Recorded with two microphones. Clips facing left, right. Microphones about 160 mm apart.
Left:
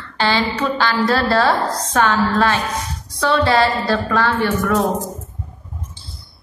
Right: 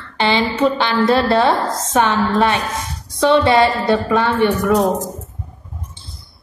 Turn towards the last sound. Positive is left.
turn(degrees=-20)  # may be behind; listen again after turning